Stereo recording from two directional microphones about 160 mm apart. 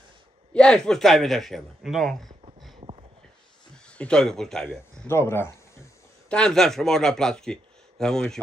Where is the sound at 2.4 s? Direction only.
35° right (ahead or behind).